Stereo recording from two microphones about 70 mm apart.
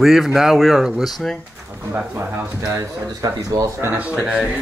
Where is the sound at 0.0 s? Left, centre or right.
Centre.